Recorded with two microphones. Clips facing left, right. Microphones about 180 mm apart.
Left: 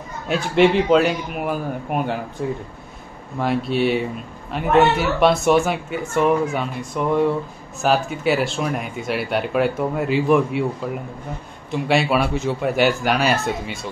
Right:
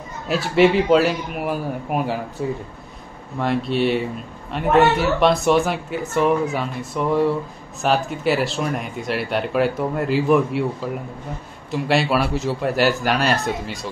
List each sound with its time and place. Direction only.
0.3 s speech: centre (ahead or behind)